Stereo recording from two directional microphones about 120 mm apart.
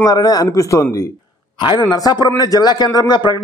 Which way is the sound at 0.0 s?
30° left (ahead or behind).